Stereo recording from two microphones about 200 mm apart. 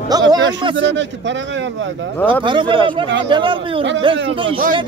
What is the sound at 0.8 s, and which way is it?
A man's voice, 65° right (ahead or behind).